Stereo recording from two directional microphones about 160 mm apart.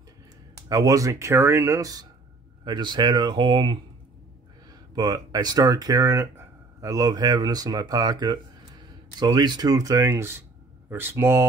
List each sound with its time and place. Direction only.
0.7 s speech: 20° right (ahead or behind)
4.9 s speech: 25° right (ahead or behind)